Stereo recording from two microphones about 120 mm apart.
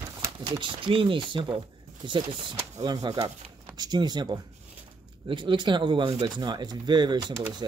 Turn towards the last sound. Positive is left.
turn(degrees=-35)  # may be behind; listen again after turning